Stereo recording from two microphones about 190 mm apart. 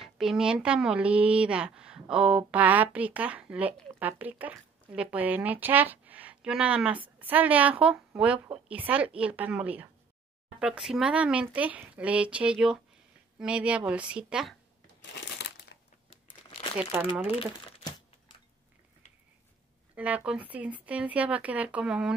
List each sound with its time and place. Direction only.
0.0 s a woman's voice: centre (ahead or behind)
15.0 s crumpling: 70° left (ahead or behind)
17.4 s crumpling: 30° left (ahead or behind)
20.0 s a woman's voice: 10° right (ahead or behind)